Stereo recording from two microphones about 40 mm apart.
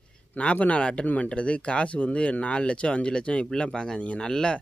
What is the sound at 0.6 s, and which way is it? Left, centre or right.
Speech, left.